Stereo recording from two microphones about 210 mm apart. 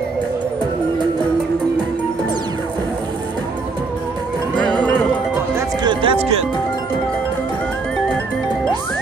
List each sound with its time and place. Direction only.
4.6 s music: 5° left (ahead or behind)
5.9 s music: 25° right (ahead or behind)